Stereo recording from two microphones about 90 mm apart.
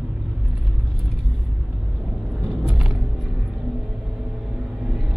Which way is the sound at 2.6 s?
20° right (ahead or behind).